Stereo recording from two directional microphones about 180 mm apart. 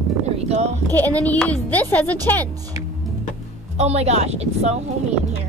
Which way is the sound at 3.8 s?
35° right (ahead or behind).